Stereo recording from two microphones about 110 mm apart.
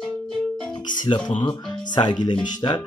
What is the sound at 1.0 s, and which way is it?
Speech, 45° left (ahead or behind).